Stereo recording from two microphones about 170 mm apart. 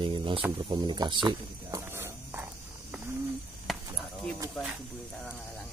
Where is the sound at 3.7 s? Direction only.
Centre (ahead or behind).